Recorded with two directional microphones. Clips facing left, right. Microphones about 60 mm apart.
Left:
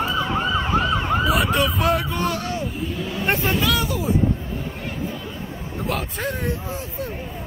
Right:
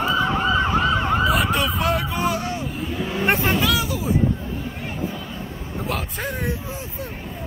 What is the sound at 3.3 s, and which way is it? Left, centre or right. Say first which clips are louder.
Vehicle: right 1 dB; right.